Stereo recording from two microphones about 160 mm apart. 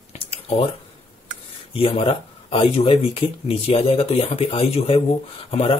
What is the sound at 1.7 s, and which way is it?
Speech, 35° left (ahead or behind).